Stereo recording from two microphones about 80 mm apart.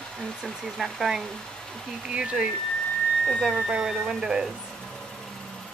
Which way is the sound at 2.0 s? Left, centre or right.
Centre.